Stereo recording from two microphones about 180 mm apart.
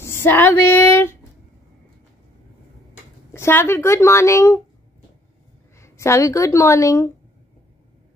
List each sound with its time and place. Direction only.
0.0 s female singing: 15° left (ahead or behind)
3.3 s a woman's voice: 15° left (ahead or behind)
5.8 s speech: 15° left (ahead or behind)